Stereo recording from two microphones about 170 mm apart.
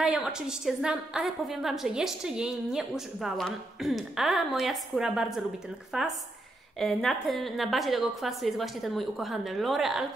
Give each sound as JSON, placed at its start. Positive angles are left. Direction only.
{"t": 0.0, "sound": "a woman's voice", "side_deg": -5}